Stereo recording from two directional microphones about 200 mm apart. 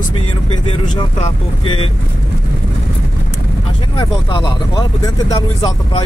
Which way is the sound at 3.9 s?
20° left (ahead or behind).